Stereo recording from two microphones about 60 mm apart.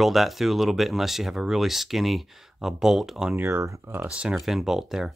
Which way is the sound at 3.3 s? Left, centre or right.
Right.